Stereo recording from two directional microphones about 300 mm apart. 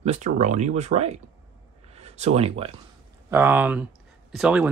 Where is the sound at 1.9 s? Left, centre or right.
Right.